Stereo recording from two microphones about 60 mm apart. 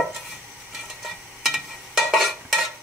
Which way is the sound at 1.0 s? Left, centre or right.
Centre.